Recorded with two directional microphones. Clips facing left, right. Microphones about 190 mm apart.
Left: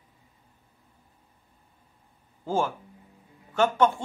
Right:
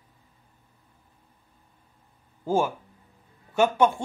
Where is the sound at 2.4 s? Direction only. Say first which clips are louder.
Right 3 dB; 10° right (ahead or behind).